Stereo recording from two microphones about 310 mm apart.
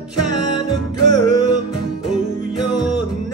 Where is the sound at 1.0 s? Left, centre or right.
Left.